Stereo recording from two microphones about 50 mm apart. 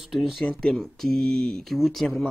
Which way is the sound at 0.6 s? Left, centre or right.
Centre.